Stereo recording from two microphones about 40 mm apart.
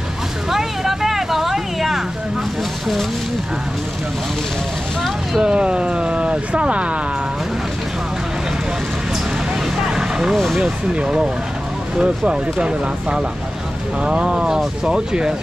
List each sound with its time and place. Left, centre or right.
0.5 s vehicle: centre
5.4 s speech: right
9.8 s vehicle: centre
10.3 s speech: centre
10.6 s speech: right